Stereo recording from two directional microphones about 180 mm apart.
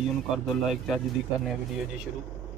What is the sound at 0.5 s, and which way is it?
Speech, centre (ahead or behind).